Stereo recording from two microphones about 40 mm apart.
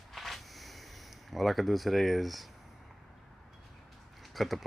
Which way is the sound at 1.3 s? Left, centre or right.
Centre.